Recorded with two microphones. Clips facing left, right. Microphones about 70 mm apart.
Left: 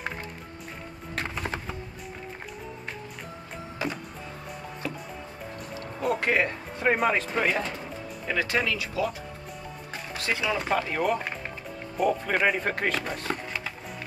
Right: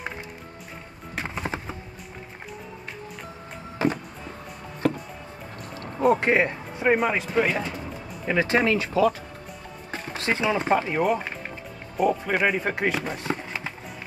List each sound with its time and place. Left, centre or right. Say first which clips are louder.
1.1 s music: right 2 dB; centre
4.8 s music: right 11 dB; right
5.8 s music: right 8 dB; right
6.1 s speech: right 3 dB; right
6.8 s speech: right 2 dB; centre
8.3 s speech: right 6 dB; right
10.1 s speech: right 4 dB; right
12.0 s speech: right 2 dB; centre